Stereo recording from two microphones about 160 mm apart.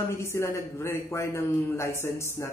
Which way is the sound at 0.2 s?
15° left (ahead or behind).